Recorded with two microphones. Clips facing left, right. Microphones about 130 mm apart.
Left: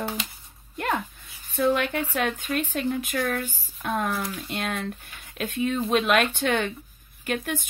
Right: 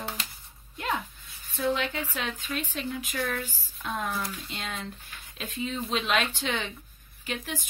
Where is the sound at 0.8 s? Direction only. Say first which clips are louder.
Left 4 dB; 55° left (ahead or behind).